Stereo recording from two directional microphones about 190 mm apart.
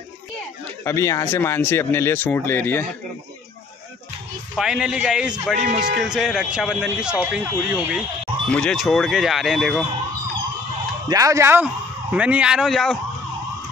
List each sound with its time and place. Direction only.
0.8 s speech: 15° left (ahead or behind)
4.6 s speech: 5° right (ahead or behind)
5.6 s speech: 40° right (ahead or behind)
6.0 s speech: 5° right (ahead or behind)
11.1 s speech: 20° right (ahead or behind); by 13.0 s centre (ahead or behind)